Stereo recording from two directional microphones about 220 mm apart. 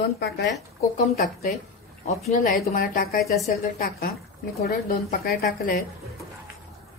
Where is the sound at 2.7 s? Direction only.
40° left (ahead or behind).